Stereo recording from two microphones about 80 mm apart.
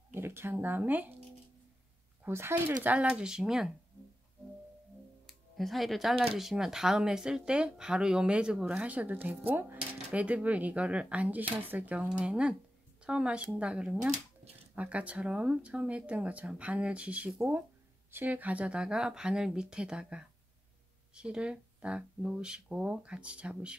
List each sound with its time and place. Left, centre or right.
0.1 s speech: right
2.2 s speech: right
2.8 s speech: centre
5.2 s music: centre
6.1 s speech: centre